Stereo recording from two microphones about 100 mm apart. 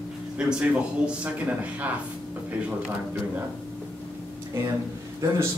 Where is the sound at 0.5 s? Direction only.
10° right (ahead or behind).